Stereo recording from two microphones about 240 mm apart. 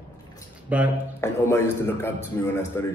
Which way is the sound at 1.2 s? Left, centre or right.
Centre.